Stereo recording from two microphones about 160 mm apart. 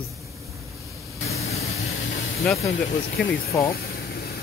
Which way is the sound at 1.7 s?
70° left (ahead or behind).